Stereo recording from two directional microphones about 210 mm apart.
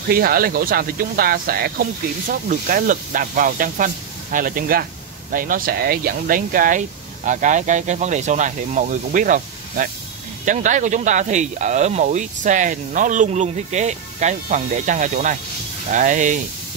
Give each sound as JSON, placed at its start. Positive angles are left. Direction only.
{"t": 0.1, "sound": "speech", "side_deg": -45}